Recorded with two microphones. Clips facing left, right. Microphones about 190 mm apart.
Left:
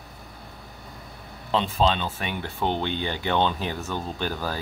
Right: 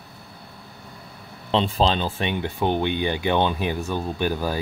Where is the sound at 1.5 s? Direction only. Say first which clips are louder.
Right 2 dB; 30° right (ahead or behind).